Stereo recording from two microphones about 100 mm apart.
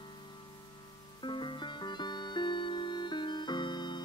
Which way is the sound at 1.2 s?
50° left (ahead or behind).